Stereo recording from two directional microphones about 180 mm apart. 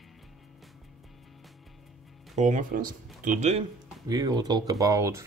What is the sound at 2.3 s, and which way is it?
Speech, 45° right (ahead or behind).